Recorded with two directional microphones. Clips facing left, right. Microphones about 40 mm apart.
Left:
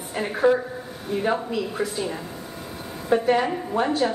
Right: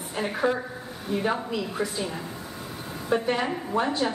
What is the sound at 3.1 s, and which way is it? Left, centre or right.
Speech, centre.